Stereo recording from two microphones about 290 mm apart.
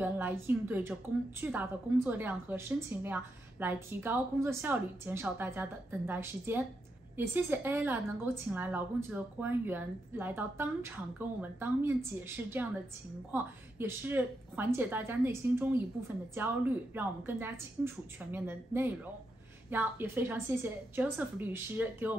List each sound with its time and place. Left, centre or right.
0.0 s a woman's voice: centre